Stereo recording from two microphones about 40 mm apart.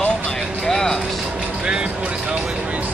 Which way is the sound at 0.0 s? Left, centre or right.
Left.